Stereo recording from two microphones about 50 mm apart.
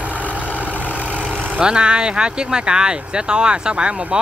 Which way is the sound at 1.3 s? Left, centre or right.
Right.